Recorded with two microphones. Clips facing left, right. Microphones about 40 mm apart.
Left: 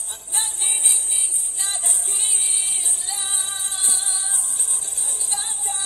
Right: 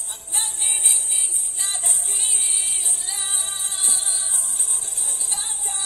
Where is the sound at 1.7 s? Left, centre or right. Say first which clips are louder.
Left 1 dB; left.